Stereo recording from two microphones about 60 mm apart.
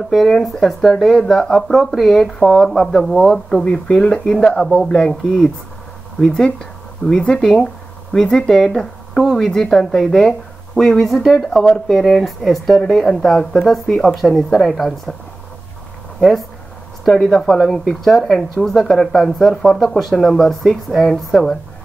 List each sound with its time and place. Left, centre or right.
0.1 s speech: centre
14.1 s speech: centre
16.2 s speech: centre